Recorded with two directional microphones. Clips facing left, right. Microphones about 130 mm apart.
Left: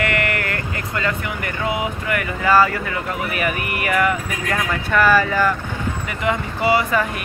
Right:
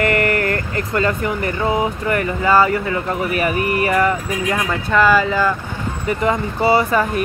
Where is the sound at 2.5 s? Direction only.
25° right (ahead or behind).